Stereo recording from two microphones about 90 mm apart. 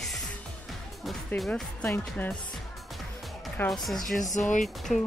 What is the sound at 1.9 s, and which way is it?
Speech, 20° left (ahead or behind).